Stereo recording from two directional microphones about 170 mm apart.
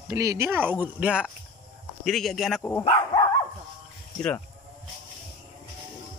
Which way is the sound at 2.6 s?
10° left (ahead or behind).